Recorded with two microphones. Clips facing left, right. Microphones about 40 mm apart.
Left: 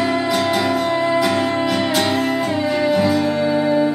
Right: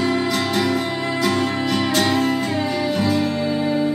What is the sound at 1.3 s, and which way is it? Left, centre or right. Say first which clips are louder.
Music: left 3 dB; left.